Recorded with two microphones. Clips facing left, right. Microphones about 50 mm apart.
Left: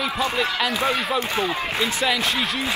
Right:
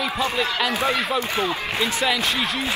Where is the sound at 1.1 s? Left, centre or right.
Left.